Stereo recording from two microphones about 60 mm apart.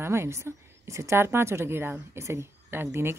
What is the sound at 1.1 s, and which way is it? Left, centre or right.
Speech, right.